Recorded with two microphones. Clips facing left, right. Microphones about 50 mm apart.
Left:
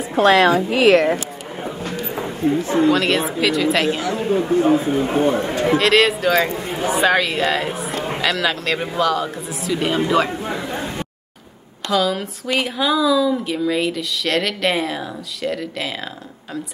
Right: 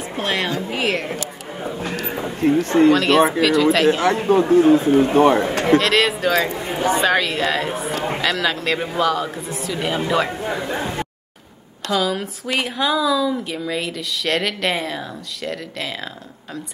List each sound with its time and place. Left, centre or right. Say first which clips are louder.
0.1 s a woman's voice: left 10 dB; left
2.4 s speech: right 2 dB; right
2.9 s speech: right 3 dB; centre
4.0 s a man's voice: right 4 dB; right
5.8 s speech: left 2 dB; centre
11.9 s speech: left 2 dB; centre